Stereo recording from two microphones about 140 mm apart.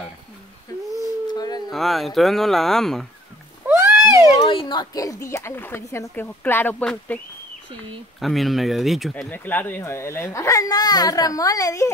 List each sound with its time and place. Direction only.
1.3 s howl: 30° left (ahead or behind)
1.7 s speech: centre (ahead or behind)
3.6 s cat: 20° right (ahead or behind)
4.4 s speech: 40° left (ahead or behind); by 7.2 s 10° left (ahead or behind)
8.2 s speech: centre (ahead or behind)
9.3 s speech: 15° left (ahead or behind)